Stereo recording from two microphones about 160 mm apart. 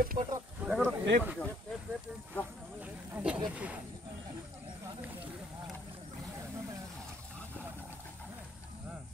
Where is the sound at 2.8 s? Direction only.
10° right (ahead or behind).